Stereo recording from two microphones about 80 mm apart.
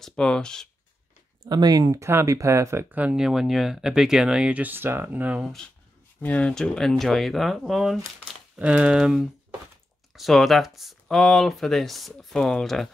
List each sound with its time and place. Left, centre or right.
0.0 s speech: centre
1.5 s speech: right
2.0 s speech: right
2.9 s speech: centre
3.2 s speech: centre
5.4 s speech: centre
6.2 s speech: centre
6.5 s speech: centre
8.5 s speech: centre